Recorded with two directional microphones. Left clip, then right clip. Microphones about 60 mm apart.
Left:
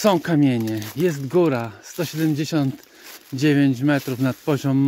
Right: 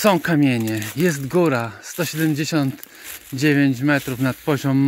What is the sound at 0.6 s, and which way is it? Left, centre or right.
Speech, right.